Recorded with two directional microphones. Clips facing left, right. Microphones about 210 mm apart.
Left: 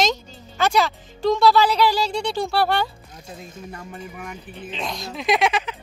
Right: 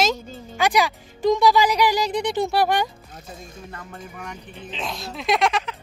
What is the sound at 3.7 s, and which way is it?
Speech, 10° left (ahead or behind).